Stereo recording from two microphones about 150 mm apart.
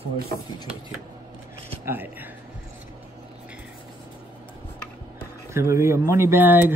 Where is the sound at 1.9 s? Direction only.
10° right (ahead or behind).